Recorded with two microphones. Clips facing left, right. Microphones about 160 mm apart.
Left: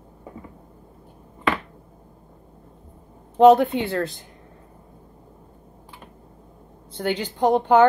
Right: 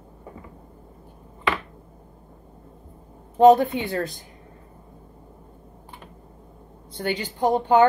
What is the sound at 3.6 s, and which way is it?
Speech, 65° left (ahead or behind).